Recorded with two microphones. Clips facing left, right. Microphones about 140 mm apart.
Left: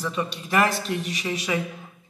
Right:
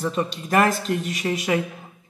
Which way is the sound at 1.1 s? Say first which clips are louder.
Right 4 dB; 50° right (ahead or behind).